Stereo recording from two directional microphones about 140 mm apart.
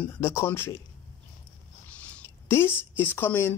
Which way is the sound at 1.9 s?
15° left (ahead or behind).